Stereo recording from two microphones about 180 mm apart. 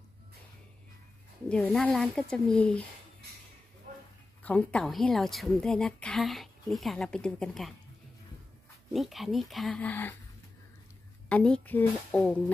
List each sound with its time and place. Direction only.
1.5 s a woman's voice: 5° left (ahead or behind)
4.4 s a woman's voice: 10° left (ahead or behind)
8.9 s a woman's voice: centre (ahead or behind)
11.2 s speech: 5° left (ahead or behind)